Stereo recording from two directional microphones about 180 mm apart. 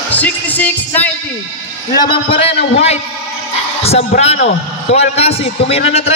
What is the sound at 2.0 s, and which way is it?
Speech, 30° left (ahead or behind).